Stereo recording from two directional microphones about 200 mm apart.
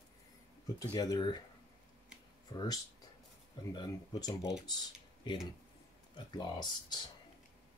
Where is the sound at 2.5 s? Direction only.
20° left (ahead or behind).